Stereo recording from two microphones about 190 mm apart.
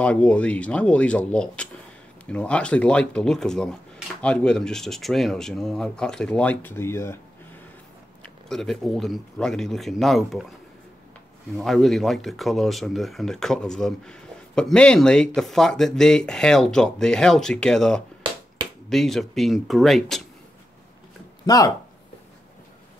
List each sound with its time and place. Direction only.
0.0 s speech: 5° left (ahead or behind)
8.2 s speech: centre (ahead or behind)
11.5 s speech: centre (ahead or behind)
21.5 s speech: 20° left (ahead or behind)